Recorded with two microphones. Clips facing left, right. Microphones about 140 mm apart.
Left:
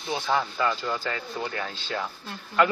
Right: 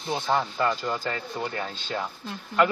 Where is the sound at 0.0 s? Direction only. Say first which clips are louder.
Right 1 dB; centre (ahead or behind).